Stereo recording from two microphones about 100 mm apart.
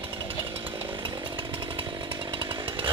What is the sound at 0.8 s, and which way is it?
Chainsaw, 50° right (ahead or behind).